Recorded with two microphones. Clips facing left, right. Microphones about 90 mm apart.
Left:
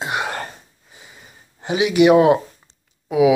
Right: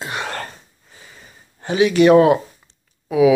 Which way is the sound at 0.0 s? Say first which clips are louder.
Left 2 dB; 15° left (ahead or behind).